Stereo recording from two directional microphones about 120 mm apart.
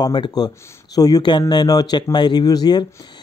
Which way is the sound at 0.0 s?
35° left (ahead or behind).